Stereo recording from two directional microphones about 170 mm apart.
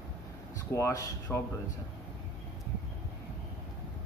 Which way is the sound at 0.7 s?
20° left (ahead or behind).